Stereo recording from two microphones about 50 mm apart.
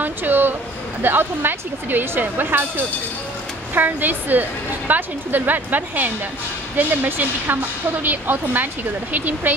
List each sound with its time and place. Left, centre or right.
0.0 s a sound: right
1.0 s speech: right
3.7 s a woman's voice: right